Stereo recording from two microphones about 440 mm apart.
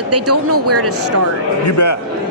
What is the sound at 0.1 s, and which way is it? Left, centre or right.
Speech, right.